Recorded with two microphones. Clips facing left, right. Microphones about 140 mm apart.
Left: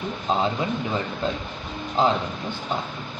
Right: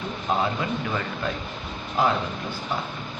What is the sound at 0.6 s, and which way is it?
A man's voice, 25° left (ahead or behind).